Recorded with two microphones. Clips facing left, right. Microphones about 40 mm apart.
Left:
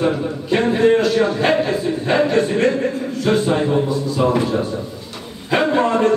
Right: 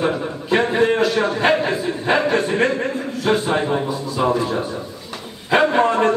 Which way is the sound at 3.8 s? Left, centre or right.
Centre.